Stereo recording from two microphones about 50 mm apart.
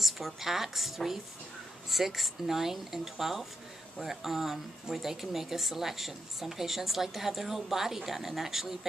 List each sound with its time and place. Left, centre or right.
0.0 s speech: centre